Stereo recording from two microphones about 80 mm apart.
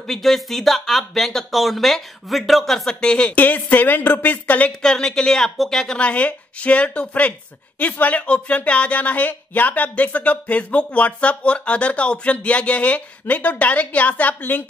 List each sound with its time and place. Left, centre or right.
0.0 s speech: centre
4.8 s speech: centre